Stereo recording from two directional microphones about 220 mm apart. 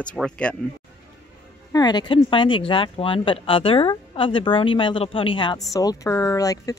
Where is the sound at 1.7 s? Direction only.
20° left (ahead or behind).